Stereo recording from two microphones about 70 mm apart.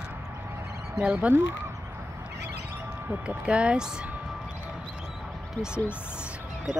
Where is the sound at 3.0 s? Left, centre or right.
Centre.